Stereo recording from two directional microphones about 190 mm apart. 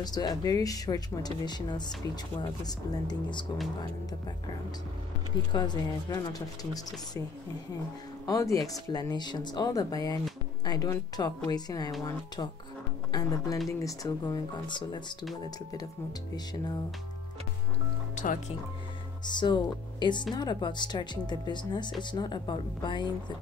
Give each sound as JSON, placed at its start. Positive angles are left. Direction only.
{"t": 0.0, "sound": "speech", "side_deg": 20}
{"t": 5.5, "sound": "speech", "side_deg": 20}
{"t": 8.3, "sound": "speech", "side_deg": 20}
{"t": 13.1, "sound": "speech", "side_deg": 20}
{"t": 18.1, "sound": "music", "side_deg": 45}
{"t": 19.2, "sound": "speech", "side_deg": 25}